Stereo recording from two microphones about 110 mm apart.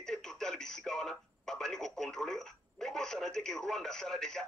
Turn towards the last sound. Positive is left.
turn(degrees=5)  # may be behind; listen again after turning